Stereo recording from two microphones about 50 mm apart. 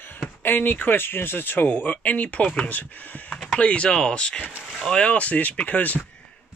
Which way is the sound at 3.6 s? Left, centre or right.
Left.